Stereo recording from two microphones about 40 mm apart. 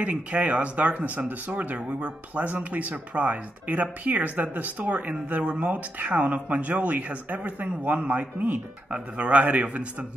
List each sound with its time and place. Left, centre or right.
0.0 s speech: right
2.4 s speech: right